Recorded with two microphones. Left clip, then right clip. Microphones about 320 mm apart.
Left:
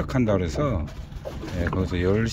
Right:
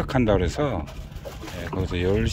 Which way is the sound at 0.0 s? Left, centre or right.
Centre.